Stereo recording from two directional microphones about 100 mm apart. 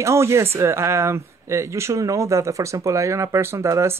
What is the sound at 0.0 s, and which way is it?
Speech, 30° right (ahead or behind).